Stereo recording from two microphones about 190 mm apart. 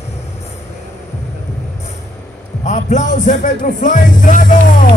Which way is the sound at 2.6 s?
40° left (ahead or behind).